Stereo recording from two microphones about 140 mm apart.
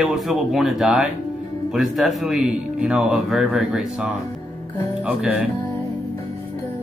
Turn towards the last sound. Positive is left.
turn(degrees=-5)  # may be behind; listen again after turning